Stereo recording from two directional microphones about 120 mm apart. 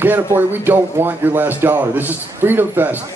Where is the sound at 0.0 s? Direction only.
15° right (ahead or behind).